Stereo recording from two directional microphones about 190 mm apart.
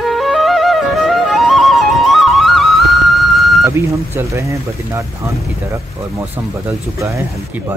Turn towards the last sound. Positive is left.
turn(degrees=-15)  # may be behind; listen again after turning